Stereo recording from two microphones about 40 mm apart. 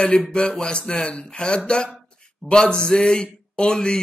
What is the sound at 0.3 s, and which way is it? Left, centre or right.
Speech, left.